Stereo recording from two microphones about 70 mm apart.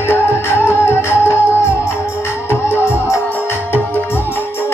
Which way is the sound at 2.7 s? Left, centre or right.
Left.